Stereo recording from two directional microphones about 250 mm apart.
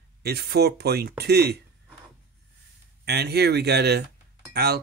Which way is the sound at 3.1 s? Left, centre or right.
Right.